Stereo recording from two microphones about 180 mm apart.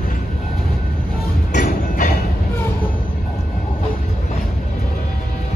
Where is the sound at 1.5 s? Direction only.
45° left (ahead or behind).